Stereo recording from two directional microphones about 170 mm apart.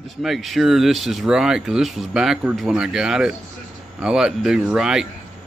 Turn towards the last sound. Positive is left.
turn(degrees=-5)  # may be behind; listen again after turning